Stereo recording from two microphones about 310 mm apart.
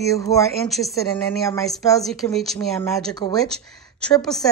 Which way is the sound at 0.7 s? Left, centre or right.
Centre.